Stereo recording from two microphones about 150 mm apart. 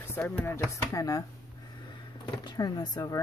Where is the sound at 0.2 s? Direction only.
15° left (ahead or behind).